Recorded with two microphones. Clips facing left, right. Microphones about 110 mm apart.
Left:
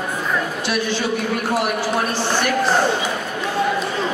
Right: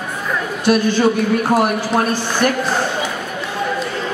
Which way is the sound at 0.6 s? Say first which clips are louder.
Right 8 dB; 45° right (ahead or behind).